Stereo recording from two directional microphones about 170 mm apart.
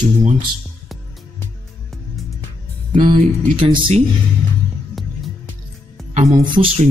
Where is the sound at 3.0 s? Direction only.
30° right (ahead or behind).